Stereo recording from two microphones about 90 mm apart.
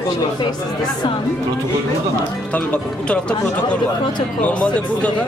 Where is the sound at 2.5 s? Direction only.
15° left (ahead or behind).